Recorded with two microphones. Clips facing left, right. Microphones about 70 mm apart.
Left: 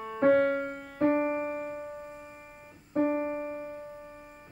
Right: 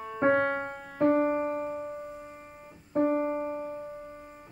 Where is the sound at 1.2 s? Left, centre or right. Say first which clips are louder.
Right 3 dB; right.